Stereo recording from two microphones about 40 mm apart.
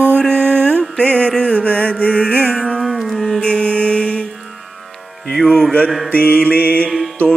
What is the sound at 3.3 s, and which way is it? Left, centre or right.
Mantra, left.